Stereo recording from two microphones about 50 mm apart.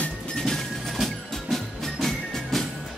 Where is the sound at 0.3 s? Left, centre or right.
Centre.